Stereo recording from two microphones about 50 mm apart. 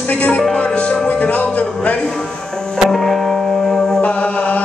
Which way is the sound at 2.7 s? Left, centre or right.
Centre.